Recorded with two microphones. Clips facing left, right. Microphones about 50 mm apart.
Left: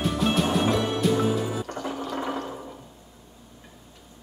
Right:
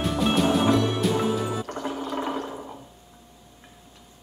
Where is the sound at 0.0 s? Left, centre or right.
Centre.